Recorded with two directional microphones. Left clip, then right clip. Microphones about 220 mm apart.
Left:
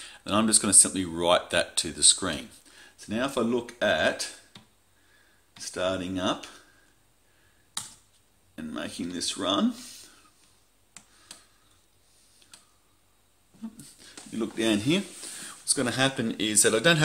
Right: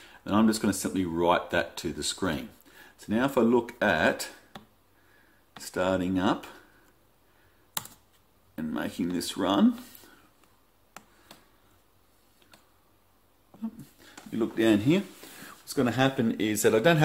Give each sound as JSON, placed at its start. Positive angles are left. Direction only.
{"t": 0.0, "sound": "speech", "side_deg": 0}
{"t": 5.6, "sound": "speech", "side_deg": -20}
{"t": 8.5, "sound": "speech", "side_deg": -20}
{"t": 12.4, "sound": "tick-tock", "side_deg": -20}
{"t": 13.6, "sound": "speech", "side_deg": -15}